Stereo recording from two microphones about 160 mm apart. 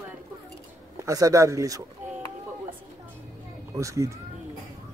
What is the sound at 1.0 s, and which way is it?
Speech, 20° right (ahead or behind).